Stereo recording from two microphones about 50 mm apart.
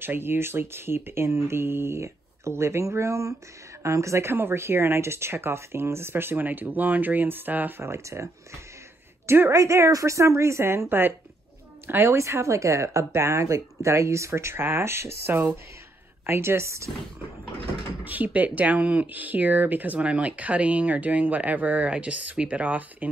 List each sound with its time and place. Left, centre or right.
0.0 s speech: right
6.4 s speech: right
7.8 s speech: right
9.5 s a woman's voice: right
12.2 s speech: right
18.0 s speech: right
20.0 s speech: right